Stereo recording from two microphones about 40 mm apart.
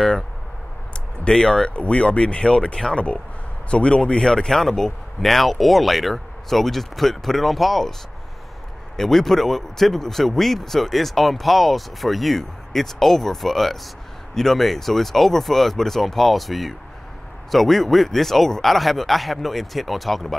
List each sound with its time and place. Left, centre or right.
1.2 s speech: centre
1.7 s speech: left
4.5 s speech: centre
8.9 s speech: centre